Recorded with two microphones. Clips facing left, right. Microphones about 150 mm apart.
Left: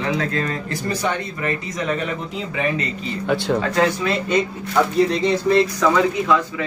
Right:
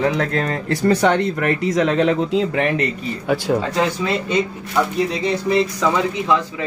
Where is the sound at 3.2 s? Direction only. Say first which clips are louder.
Right 1 dB; 10° right (ahead or behind).